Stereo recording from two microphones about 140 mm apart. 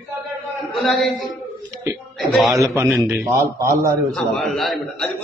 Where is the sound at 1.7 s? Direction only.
20° right (ahead or behind).